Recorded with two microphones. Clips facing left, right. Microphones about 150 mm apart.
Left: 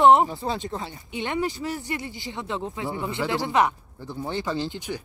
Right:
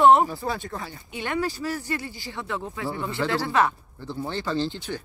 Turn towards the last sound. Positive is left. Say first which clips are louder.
# right 2 dB
turn(degrees=15)  # may be behind; listen again after turning